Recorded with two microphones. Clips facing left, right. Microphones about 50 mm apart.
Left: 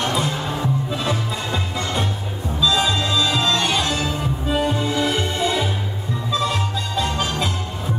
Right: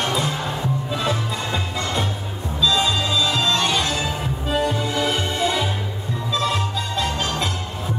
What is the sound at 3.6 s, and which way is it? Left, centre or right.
Music, left.